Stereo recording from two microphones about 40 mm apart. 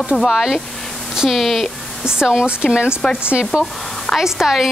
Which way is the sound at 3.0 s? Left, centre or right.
Centre.